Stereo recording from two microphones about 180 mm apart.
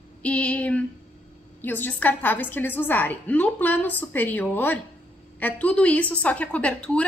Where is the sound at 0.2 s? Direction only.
5° left (ahead or behind).